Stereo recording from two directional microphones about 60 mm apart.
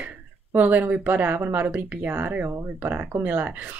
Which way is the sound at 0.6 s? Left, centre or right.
Right.